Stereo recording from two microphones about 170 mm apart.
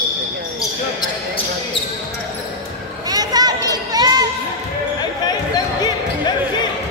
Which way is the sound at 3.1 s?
25° right (ahead or behind).